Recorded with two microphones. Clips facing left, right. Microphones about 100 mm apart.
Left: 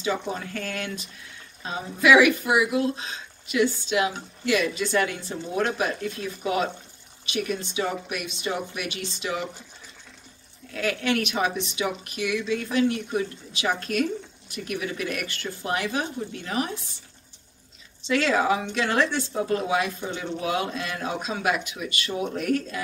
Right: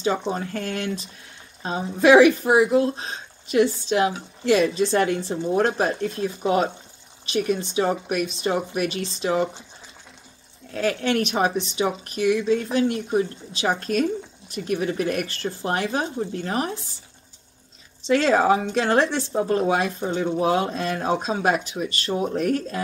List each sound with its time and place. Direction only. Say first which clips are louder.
0.3 s speech: right 4 dB; 35° right (ahead or behind)
10.7 s speech: right 3 dB; 35° right (ahead or behind)
18.0 s speech: right 4 dB; 35° right (ahead or behind)